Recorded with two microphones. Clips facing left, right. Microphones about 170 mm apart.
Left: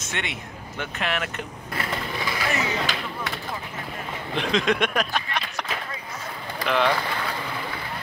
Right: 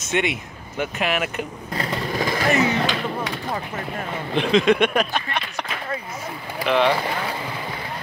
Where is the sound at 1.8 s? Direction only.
45° right (ahead or behind).